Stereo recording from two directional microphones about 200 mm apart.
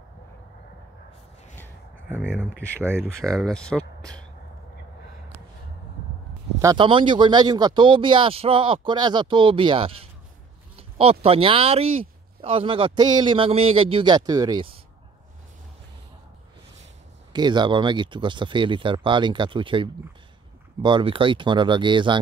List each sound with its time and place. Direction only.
2.5 s speech: 10° right (ahead or behind)
3.3 s speech: 5° left (ahead or behind)
6.6 s speech: 20° right (ahead or behind)
17.3 s speech: 20° right (ahead or behind)